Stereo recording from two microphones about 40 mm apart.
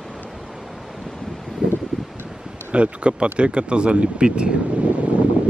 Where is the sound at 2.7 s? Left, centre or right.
Right.